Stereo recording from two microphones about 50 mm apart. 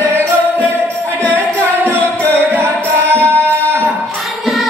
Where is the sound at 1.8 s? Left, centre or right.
Left.